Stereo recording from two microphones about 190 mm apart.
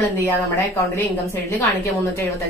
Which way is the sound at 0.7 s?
10° left (ahead or behind).